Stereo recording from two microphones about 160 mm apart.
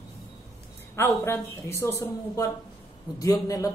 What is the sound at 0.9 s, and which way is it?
Speech, 15° left (ahead or behind).